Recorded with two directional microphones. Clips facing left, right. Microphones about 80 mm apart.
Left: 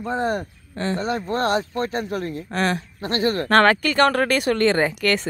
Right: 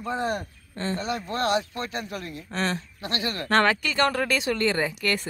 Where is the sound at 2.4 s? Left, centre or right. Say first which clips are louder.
Left 4 dB; left.